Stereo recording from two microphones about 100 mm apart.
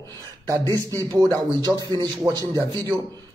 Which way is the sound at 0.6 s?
30° left (ahead or behind).